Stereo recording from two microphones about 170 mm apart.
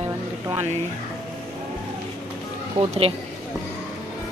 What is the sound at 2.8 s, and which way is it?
Speech, 30° right (ahead or behind).